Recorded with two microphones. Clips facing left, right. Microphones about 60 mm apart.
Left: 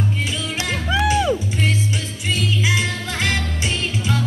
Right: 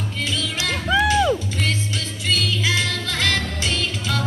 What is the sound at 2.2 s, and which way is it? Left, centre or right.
Music, left.